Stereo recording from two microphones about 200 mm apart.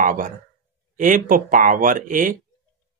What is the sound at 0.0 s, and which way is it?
Speech, 40° right (ahead or behind).